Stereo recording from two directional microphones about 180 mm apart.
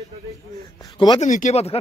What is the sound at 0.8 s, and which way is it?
Speech, 20° left (ahead or behind).